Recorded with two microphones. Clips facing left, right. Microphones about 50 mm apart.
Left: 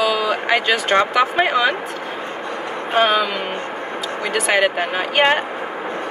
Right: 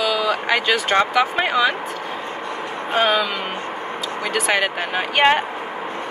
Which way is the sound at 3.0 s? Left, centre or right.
Centre.